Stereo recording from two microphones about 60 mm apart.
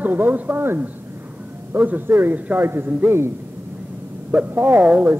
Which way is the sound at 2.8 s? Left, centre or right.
Right.